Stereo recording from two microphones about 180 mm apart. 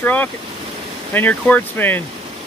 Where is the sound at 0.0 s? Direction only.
10° left (ahead or behind).